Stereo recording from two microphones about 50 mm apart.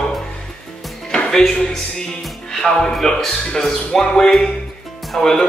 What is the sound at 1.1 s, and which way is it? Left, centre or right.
Music, centre.